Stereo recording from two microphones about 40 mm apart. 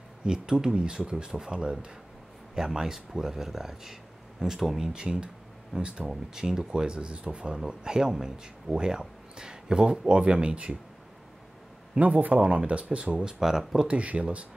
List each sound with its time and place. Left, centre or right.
0.2 s speech: centre
4.8 s speech: right
6.3 s speech: centre; by 10.8 s right
12.0 s speech: right
13.2 s speech: centre
13.8 s speech: right